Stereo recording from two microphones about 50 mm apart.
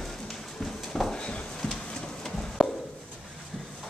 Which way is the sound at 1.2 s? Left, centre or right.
Centre.